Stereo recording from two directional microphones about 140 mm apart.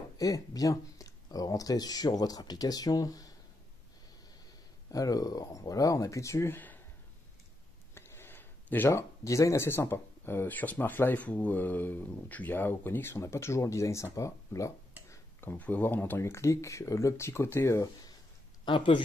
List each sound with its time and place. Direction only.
0.2 s speech: 25° left (ahead or behind)
4.9 s speech: 25° left (ahead or behind)
7.9 s speech: 15° left (ahead or behind)
18.7 s speech: 35° left (ahead or behind)